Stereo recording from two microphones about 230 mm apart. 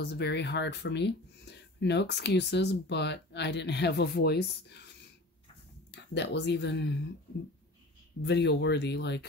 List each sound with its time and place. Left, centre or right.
0.0 s speech: left
5.9 s speech: left
8.2 s speech: left